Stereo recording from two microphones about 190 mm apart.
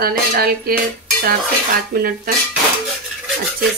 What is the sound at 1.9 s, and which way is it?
Speech, 50° right (ahead or behind).